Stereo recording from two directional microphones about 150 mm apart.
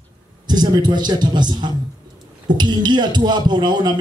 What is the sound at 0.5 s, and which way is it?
A man's voice, 30° right (ahead or behind).